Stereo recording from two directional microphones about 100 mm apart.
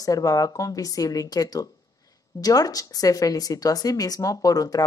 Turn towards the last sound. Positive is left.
turn(degrees=35)  # may be behind; listen again after turning